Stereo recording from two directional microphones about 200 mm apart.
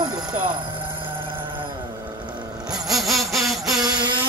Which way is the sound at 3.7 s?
20° right (ahead or behind).